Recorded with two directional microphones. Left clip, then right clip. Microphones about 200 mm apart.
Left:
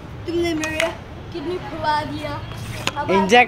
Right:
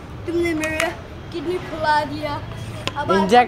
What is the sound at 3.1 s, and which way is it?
Speech, 5° right (ahead or behind).